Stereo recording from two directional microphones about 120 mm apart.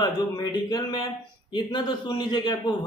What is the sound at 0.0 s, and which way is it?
Speech, 35° left (ahead or behind).